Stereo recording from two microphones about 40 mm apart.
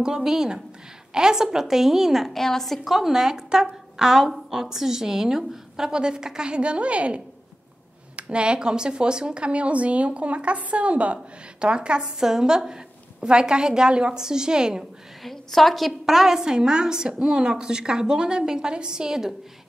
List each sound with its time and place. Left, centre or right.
0.0 s a woman's voice: centre
2.3 s a woman's voice: centre; by 7.2 s right
8.2 s speech: right
15.2 s a woman's voice: centre
16.1 s a woman's voice: centre